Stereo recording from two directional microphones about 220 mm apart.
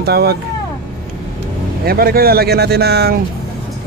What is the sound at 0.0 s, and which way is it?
Speech, 45° right (ahead or behind).